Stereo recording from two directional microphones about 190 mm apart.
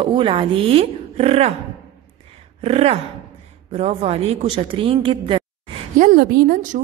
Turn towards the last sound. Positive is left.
turn(degrees=-50)  # may be behind; listen again after turning